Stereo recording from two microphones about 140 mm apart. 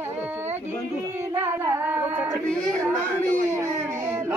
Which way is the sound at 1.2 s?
15° right (ahead or behind).